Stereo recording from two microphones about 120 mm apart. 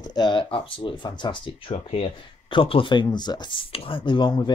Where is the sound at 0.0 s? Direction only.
35° left (ahead or behind).